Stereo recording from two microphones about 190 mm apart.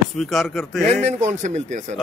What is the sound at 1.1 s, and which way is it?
Speech, 40° right (ahead or behind).